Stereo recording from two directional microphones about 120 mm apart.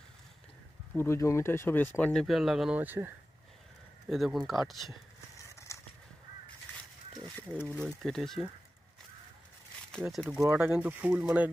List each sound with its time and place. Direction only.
0.9 s speech: 20° left (ahead or behind)
2.1 s speech: centre (ahead or behind)
2.8 s speech: 15° right (ahead or behind)
4.1 s speech: centre (ahead or behind)
5.5 s a sound: 25° left (ahead or behind)
7.8 s speech: centre (ahead or behind)
10.0 s speech: centre (ahead or behind)
10.5 s speech: 10° right (ahead or behind)